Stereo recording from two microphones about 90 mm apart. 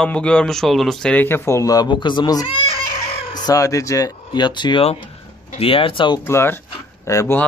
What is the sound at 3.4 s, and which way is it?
Speech, 35° left (ahead or behind).